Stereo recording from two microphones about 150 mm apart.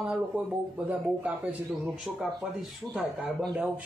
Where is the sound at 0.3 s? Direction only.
10° right (ahead or behind).